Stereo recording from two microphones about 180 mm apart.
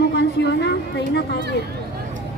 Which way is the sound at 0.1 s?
70° left (ahead or behind).